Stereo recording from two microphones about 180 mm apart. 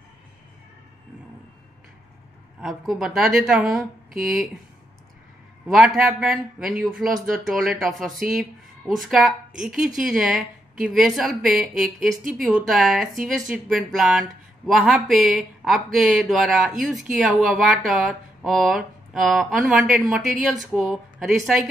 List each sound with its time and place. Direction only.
2.6 s a woman's voice: centre (ahead or behind)
5.7 s a woman's voice: centre (ahead or behind)